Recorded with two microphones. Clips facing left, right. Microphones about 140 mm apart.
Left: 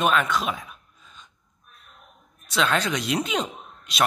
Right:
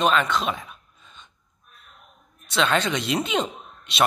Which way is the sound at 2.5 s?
Centre (ahead or behind).